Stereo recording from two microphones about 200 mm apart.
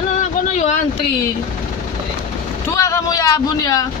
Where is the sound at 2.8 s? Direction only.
15° left (ahead or behind).